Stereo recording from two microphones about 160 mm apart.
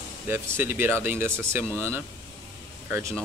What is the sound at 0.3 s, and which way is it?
Speech, 15° right (ahead or behind).